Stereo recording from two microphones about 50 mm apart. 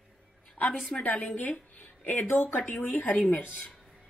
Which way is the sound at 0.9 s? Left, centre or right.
Left.